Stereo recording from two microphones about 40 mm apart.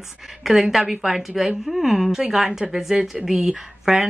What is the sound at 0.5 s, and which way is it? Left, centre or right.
A woman's voice, centre.